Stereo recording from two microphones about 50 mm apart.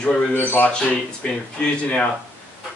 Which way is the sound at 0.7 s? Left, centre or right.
Centre.